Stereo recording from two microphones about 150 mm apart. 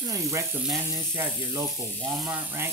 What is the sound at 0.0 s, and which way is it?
Cutlery, 20° right (ahead or behind).